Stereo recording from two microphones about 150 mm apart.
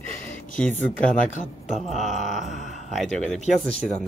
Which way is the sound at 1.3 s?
55° left (ahead or behind).